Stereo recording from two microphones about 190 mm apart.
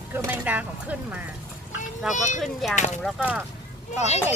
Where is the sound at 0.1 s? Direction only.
10° right (ahead or behind).